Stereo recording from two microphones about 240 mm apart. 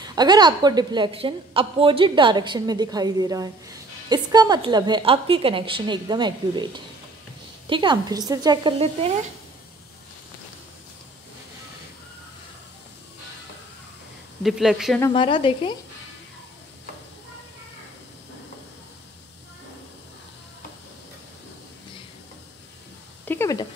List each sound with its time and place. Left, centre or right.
0.0 s a woman's voice: centre
14.4 s speech: centre
15.0 s speech: centre
23.2 s a sound: centre